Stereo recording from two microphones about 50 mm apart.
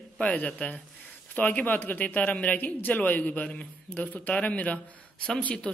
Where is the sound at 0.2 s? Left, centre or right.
Left.